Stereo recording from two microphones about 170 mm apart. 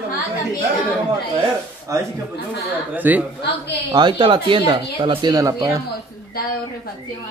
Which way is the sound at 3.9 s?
25° right (ahead or behind).